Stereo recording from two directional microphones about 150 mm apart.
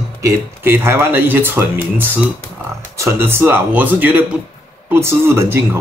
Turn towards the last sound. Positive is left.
turn(degrees=-15)  # may be behind; listen again after turning